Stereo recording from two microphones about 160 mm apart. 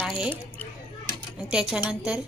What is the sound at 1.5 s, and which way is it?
Speech, 5° right (ahead or behind).